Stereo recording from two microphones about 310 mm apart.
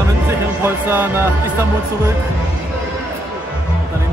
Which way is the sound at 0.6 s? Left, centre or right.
Centre.